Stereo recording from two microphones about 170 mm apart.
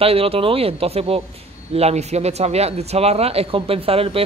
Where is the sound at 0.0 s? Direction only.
35° right (ahead or behind).